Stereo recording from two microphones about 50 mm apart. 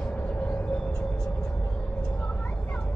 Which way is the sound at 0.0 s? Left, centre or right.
Left.